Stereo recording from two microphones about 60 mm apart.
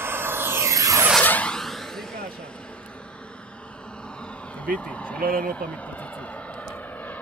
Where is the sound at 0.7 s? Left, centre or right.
Right.